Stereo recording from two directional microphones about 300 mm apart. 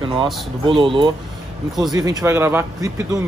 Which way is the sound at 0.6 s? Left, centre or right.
Centre.